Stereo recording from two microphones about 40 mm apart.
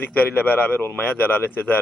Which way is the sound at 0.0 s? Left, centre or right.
Left.